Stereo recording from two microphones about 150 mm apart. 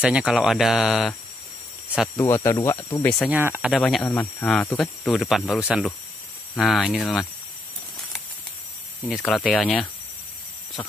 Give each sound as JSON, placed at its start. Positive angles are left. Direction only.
{"t": 0.0, "sound": "speech", "side_deg": -5}
{"t": 2.1, "sound": "speech", "side_deg": 15}
{"t": 3.3, "sound": "speech", "side_deg": -15}
{"t": 3.7, "sound": "speech", "side_deg": 0}
{"t": 4.0, "sound": "speech", "side_deg": 15}
{"t": 9.1, "sound": "speech", "side_deg": 0}